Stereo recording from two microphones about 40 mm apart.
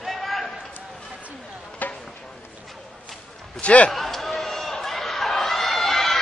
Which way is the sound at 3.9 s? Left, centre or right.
Centre.